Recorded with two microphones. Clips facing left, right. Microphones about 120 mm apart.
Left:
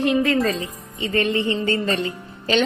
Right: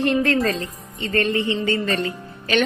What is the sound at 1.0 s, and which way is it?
Speech, 20° left (ahead or behind).